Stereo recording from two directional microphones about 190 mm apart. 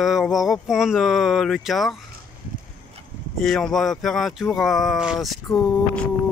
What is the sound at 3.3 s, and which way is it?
Speech, centre (ahead or behind).